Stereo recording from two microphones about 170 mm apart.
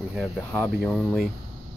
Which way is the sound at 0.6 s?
Centre (ahead or behind).